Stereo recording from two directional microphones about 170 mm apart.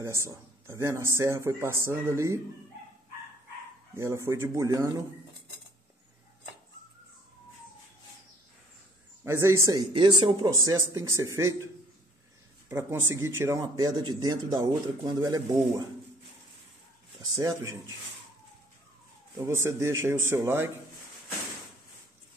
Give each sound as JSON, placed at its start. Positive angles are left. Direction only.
{"t": 0.0, "sound": "speech", "side_deg": -15}
{"t": 3.9, "sound": "speech", "side_deg": -15}
{"t": 9.2, "sound": "speech", "side_deg": -15}
{"t": 12.6, "sound": "speech", "side_deg": -15}
{"t": 17.2, "sound": "speech", "side_deg": -20}
{"t": 19.4, "sound": "speech", "side_deg": -15}